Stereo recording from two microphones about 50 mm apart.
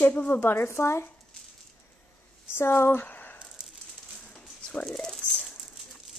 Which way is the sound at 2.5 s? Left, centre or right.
Left.